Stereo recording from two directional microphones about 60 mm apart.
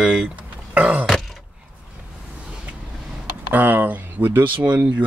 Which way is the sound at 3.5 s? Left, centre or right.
Right.